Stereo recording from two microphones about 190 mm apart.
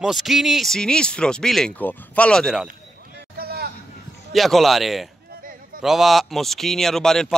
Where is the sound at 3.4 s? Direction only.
55° right (ahead or behind).